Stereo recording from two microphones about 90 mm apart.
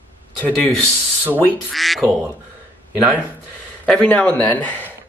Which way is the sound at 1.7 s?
Centre (ahead or behind).